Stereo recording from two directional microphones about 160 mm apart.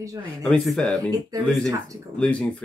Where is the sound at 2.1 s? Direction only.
5° left (ahead or behind).